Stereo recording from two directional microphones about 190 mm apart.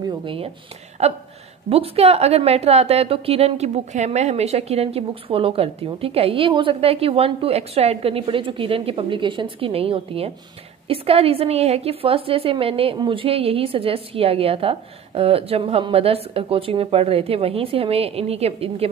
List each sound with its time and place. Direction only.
0.1 s a woman's voice: 25° right (ahead or behind)